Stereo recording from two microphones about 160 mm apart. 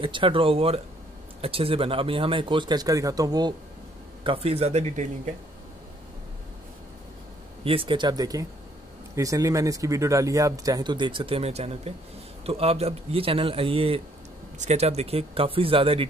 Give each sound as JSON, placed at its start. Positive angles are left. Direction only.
{"t": 0.0, "sound": "speech", "side_deg": -35}
{"t": 4.2, "sound": "speech", "side_deg": -35}
{"t": 7.6, "sound": "speech", "side_deg": -35}